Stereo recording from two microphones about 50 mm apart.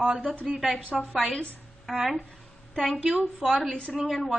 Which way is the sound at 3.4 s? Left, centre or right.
Centre.